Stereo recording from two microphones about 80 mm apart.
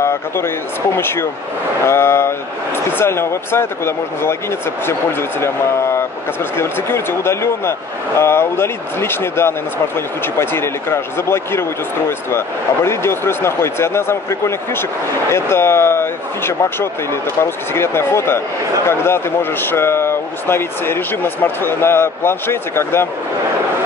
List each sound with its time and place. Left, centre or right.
0.9 s speech: left
5.4 s speech: left